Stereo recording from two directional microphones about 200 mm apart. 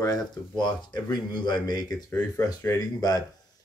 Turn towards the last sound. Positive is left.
turn(degrees=20)  # may be behind; listen again after turning